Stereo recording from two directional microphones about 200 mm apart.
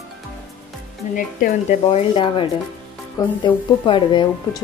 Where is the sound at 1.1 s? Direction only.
40° left (ahead or behind).